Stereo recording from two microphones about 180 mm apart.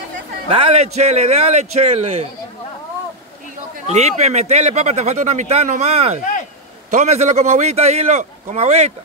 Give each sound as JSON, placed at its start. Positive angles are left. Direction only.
{"t": 0.5, "sound": "speech", "side_deg": -35}
{"t": 3.9, "sound": "speech", "side_deg": -40}